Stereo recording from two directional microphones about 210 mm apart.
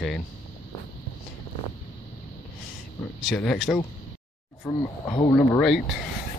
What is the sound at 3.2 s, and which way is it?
Speech, 5° left (ahead or behind).